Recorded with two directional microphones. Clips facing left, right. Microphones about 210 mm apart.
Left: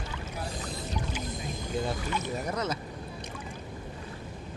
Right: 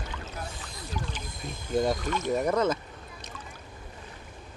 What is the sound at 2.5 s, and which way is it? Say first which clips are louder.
Speech: right 7 dB; 50° right (ahead or behind).